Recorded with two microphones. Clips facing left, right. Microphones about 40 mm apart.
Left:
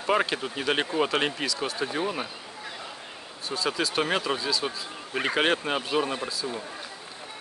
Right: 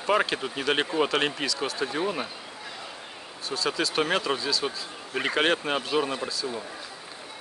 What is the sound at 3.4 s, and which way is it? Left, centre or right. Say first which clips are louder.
Speech: even; centre.